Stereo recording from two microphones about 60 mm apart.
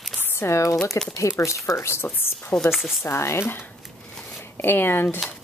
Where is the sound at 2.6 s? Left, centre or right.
Centre.